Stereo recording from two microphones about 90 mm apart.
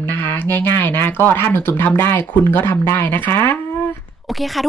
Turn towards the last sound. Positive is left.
turn(degrees=0)  # may be behind; listen again after turning